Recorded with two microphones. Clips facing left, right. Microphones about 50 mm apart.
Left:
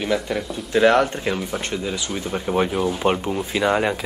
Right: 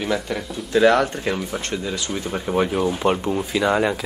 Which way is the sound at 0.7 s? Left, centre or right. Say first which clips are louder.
Even; left.